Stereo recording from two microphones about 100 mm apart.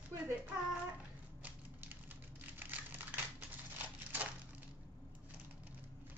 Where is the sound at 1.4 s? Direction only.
15° right (ahead or behind).